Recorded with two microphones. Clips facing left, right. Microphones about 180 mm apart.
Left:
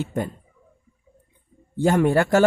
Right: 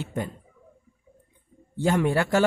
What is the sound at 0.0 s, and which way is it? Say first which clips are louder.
Speech: left 4 dB; 45° left (ahead or behind).